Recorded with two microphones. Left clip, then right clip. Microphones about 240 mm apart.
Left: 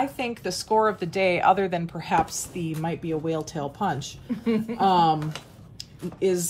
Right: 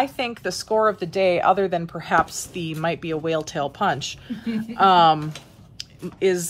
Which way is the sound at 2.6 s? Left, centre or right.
Right.